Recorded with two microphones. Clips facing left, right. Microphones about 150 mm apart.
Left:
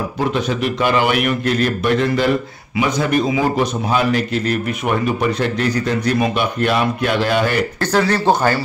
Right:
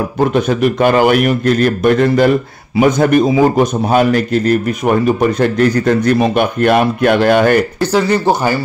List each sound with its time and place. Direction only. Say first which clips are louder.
0.3 s a man's voice: right 6 dB; 50° right (ahead or behind)
7.8 s speech: right 3 dB; 10° right (ahead or behind)